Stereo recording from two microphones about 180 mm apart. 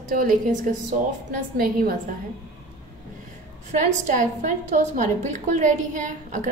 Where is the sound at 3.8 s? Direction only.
45° right (ahead or behind).